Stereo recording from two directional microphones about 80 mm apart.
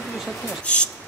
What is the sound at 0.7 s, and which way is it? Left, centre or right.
Speech, centre.